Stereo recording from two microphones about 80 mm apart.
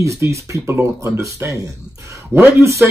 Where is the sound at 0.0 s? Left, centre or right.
Right.